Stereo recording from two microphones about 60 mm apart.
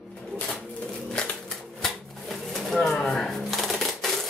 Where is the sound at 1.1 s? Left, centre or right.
Centre.